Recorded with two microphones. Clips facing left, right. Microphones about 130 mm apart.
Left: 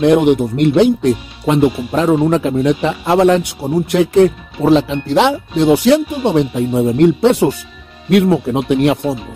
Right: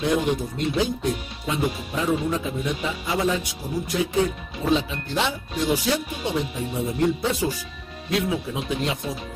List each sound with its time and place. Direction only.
0.0 s speech: 70° left (ahead or behind)